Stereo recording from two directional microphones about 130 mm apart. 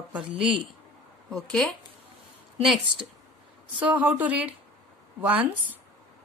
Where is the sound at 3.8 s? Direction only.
10° right (ahead or behind).